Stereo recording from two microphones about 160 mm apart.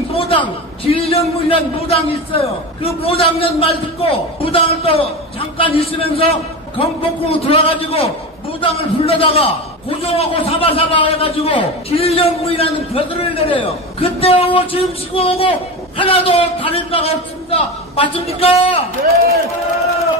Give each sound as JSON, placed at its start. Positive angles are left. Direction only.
{"t": 0.1, "sound": "a man's voice", "side_deg": 35}
{"t": 19.0, "sound": "speech", "side_deg": -75}